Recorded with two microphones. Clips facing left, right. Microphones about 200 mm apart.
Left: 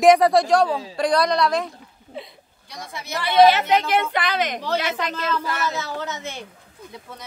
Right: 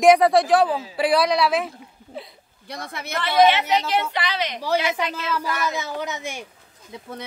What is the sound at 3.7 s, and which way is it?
Speech, 50° left (ahead or behind).